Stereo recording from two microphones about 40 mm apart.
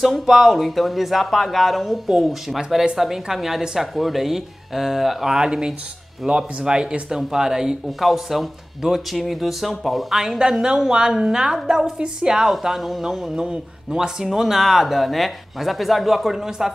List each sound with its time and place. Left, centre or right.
0.0 s speech: centre
8.0 s speech: centre
12.6 s speech: centre